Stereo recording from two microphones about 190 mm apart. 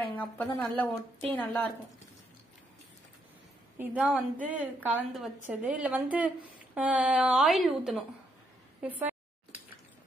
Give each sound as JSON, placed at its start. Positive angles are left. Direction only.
{"t": 0.1, "sound": "a woman's voice", "side_deg": 10}
{"t": 3.7, "sound": "a woman's voice", "side_deg": -10}